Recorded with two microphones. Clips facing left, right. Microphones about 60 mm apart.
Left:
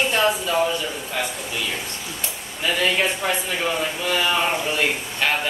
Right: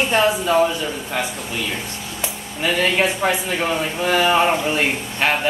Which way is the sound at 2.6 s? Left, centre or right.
Right.